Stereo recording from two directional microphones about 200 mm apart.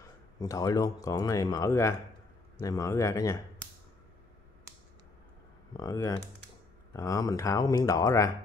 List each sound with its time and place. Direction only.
0.4 s speech: 15° left (ahead or behind)
5.7 s speech: 20° left (ahead or behind)